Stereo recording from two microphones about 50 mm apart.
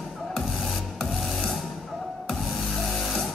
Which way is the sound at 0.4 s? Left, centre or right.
Centre.